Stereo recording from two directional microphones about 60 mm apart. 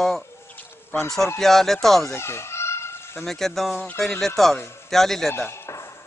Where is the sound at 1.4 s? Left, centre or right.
Centre.